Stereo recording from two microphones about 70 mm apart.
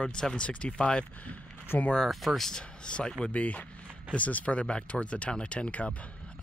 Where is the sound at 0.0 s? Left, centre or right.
Centre.